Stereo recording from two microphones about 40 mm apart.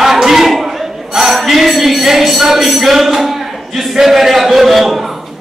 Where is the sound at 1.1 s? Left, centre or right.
Centre.